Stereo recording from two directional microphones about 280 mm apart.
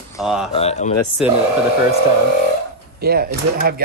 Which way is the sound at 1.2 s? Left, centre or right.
Centre.